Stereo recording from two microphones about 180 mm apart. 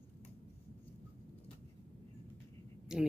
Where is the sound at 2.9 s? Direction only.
5° right (ahead or behind).